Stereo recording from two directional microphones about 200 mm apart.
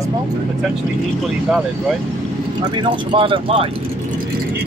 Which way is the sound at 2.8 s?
25° right (ahead or behind).